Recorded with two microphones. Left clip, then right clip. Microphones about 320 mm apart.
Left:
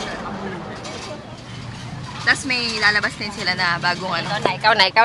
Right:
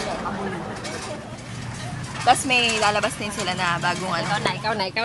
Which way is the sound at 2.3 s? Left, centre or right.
Centre.